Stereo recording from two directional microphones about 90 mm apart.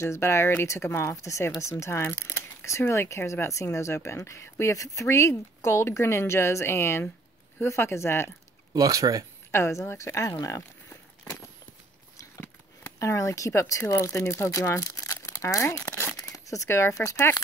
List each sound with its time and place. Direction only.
0.0 s speech: 30° left (ahead or behind)
8.7 s speech: 40° right (ahead or behind)
9.5 s speech: 30° left (ahead or behind)
12.4 s speech: 30° left (ahead or behind)